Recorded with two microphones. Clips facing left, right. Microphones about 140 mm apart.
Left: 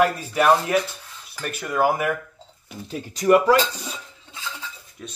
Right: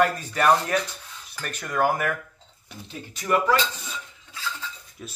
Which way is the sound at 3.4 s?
35° left (ahead or behind).